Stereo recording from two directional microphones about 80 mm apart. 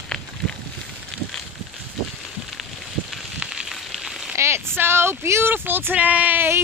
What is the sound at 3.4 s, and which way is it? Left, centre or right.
Frying, centre.